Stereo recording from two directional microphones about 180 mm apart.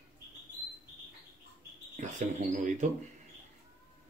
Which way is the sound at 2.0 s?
40° right (ahead or behind).